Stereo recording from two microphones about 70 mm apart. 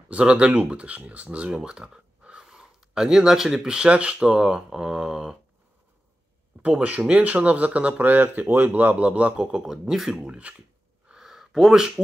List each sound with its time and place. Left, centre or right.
0.1 s speech: centre
6.8 s speech: right
11.1 s a sound: centre